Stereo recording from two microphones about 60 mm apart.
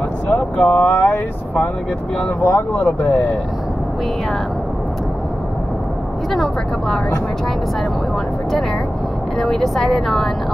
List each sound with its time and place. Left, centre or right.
0.3 s speech: left
2.4 s speech: left
6.3 s speech: centre
9.4 s speech: centre